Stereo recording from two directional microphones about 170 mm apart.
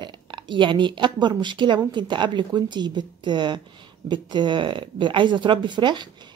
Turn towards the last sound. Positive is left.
turn(degrees=-25)  # may be behind; listen again after turning